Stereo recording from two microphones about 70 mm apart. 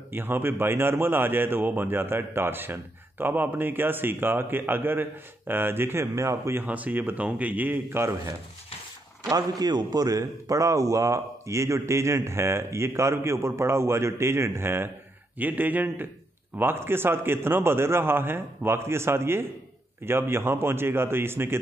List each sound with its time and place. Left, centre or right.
0.1 s speech: right
6.1 s a man's voice: right
6.6 s a man's voice: right
9.3 s a man's voice: right
15.3 s a man's voice: right